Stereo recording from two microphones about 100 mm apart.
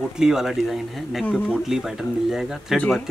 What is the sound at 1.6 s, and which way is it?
Speech, 5° right (ahead or behind).